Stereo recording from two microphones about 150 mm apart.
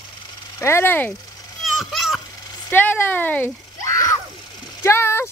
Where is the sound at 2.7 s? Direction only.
10° left (ahead or behind).